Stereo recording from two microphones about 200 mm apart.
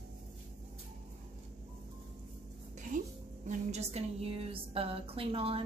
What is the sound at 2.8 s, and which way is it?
A woman's voice, 40° right (ahead or behind).